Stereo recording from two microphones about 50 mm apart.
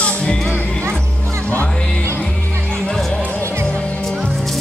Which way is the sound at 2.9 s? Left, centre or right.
Centre.